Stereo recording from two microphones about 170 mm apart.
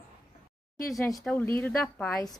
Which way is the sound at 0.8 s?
20° left (ahead or behind).